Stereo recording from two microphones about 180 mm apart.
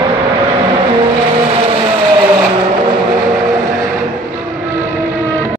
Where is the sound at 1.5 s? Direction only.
30° right (ahead or behind).